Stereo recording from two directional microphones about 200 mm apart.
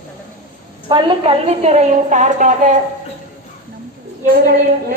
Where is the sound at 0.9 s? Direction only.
30° right (ahead or behind).